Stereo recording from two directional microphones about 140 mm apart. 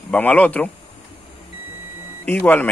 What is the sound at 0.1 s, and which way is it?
Speech, 10° left (ahead or behind).